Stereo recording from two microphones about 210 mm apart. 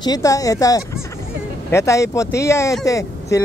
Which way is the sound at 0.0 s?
15° left (ahead or behind).